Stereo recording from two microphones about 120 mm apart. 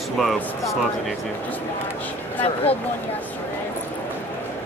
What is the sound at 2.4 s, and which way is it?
Speech, 55° left (ahead or behind).